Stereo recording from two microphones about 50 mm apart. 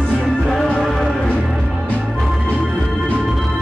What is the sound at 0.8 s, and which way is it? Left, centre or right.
Music, centre.